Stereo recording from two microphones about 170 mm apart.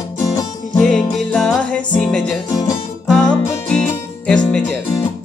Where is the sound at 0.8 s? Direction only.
5° left (ahead or behind).